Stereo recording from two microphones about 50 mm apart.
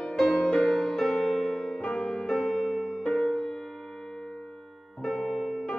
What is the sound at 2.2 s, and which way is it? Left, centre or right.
Music, centre.